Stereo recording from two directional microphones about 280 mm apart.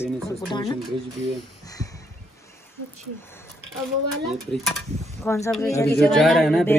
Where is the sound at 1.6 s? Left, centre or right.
Centre.